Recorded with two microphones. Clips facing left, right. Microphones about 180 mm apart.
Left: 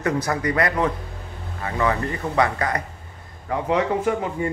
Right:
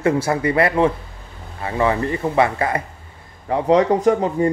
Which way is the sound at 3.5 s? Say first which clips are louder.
Right 6 dB; 35° right (ahead or behind).